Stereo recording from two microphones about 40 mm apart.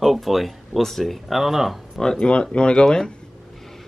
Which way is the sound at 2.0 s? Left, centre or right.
Centre.